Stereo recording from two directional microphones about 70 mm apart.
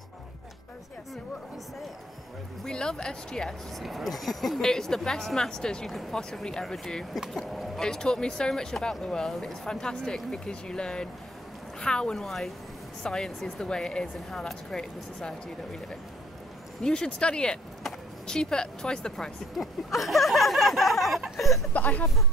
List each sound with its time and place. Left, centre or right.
2.6 s speech: centre
3.8 s a woman's voice: centre
16.8 s speech: centre
19.5 s a sound: centre
21.7 s speech: left